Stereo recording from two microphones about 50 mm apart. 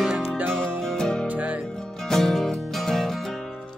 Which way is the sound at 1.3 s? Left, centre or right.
Right.